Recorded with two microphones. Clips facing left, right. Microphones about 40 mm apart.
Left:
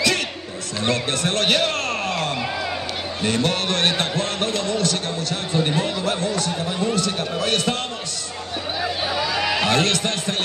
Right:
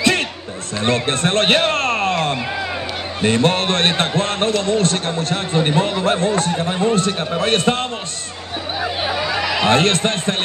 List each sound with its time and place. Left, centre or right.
0.8 s a man's voice: right
8.8 s a sound: right
9.6 s speech: right